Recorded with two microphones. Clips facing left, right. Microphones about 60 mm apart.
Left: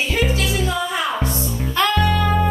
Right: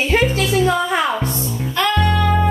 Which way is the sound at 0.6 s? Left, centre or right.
Right.